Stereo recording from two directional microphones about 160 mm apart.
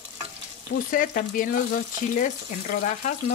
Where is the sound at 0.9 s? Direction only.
60° left (ahead or behind).